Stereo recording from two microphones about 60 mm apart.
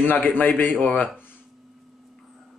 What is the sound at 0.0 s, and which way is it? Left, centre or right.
Speech, left.